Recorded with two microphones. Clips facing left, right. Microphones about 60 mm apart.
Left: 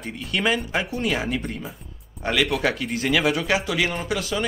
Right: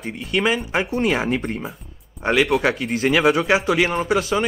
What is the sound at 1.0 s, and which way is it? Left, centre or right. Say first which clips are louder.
Speech: right 4 dB; right.